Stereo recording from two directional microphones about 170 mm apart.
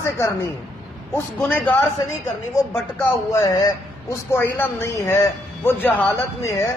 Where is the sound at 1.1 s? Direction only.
10° left (ahead or behind).